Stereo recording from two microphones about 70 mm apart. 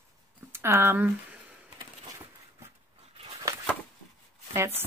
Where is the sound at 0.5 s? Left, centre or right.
Right.